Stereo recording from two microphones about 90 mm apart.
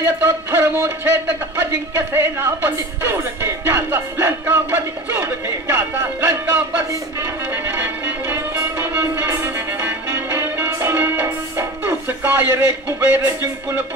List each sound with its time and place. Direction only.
0.0 s speech: 30° right (ahead or behind)
7.5 s music: 25° right (ahead or behind)